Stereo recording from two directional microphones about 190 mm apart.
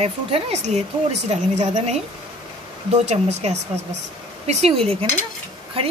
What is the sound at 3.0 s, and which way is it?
A woman's voice, 35° right (ahead or behind).